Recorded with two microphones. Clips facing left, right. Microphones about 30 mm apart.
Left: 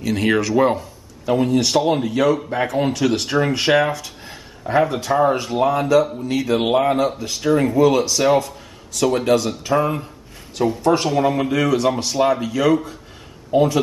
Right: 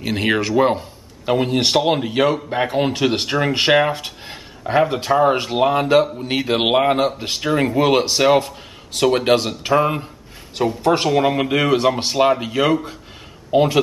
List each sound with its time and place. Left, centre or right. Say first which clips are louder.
0.0 s speech: left 1 dB; right
0.7 s a man's voice: even; right
3.9 s a sound: right 2 dB; right
4.7 s speech: right 1 dB; right
5.2 s speech: even; right
6.8 s speech: right 1 dB; right
7.2 s speech: left 1 dB; right
9.6 s speech: right 2 dB; right